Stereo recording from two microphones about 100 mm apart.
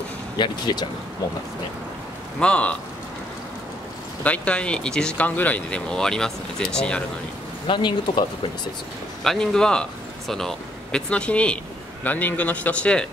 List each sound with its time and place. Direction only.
0.4 s speech: 45° left (ahead or behind)
2.4 s speech: 10° left (ahead or behind)
4.2 s speech: 15° left (ahead or behind)
7.6 s speech: 55° left (ahead or behind)
9.2 s speech: 5° left (ahead or behind)